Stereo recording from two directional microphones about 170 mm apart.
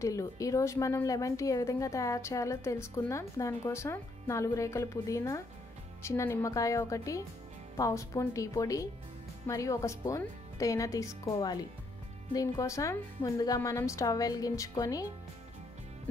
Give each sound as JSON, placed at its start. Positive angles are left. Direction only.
{"t": 0.0, "sound": "a woman's voice", "side_deg": 20}